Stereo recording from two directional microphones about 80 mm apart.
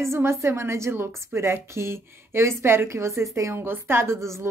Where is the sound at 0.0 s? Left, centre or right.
Right.